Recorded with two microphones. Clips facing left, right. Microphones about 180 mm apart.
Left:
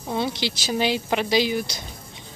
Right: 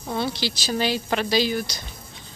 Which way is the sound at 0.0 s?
20° left (ahead or behind).